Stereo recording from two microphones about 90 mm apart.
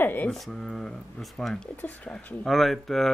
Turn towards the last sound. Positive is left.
turn(degrees=0)  # may be behind; listen again after turning